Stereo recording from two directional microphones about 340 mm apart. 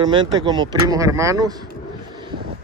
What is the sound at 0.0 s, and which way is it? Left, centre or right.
Speech, centre.